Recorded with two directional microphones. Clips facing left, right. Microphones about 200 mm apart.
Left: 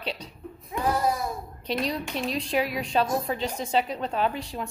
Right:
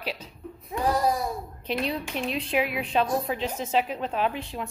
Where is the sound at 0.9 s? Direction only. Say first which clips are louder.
Right 2 dB; 35° right (ahead or behind).